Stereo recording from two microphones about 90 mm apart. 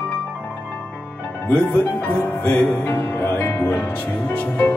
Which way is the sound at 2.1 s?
25° left (ahead or behind).